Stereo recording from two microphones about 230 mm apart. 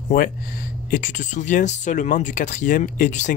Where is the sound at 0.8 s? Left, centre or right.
Left.